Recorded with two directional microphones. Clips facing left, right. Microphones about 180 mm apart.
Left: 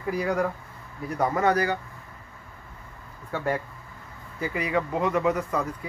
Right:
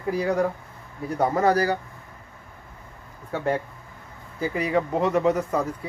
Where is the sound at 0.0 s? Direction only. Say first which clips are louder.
Right 3 dB; 30° right (ahead or behind).